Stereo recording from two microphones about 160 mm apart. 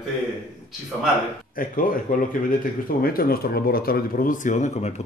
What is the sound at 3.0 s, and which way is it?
Speech, 70° left (ahead or behind).